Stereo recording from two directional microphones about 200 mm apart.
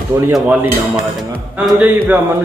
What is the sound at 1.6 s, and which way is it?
Speech, 10° right (ahead or behind).